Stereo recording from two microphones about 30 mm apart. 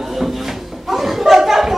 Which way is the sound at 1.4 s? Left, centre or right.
Centre.